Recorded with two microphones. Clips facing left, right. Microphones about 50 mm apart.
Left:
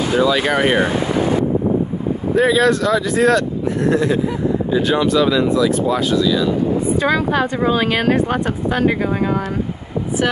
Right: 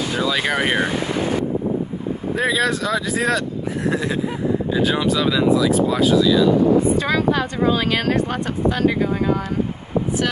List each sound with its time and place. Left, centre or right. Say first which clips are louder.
0.1 s speech: left 6 dB; centre
2.3 s speech: left 6 dB; centre
7.0 s a woman's voice: left 2 dB; centre